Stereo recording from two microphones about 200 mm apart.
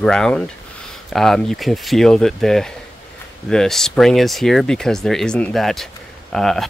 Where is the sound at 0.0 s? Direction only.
5° left (ahead or behind).